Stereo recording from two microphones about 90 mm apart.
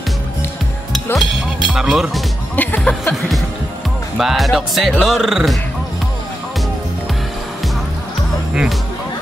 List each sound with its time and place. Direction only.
1.1 s speech: centre (ahead or behind)
2.5 s speech: 20° left (ahead or behind)
4.2 s speech: centre (ahead or behind)